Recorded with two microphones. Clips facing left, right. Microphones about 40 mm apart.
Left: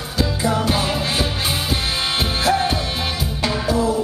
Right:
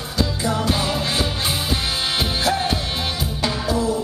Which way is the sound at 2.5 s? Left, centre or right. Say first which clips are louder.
Left 5 dB; centre.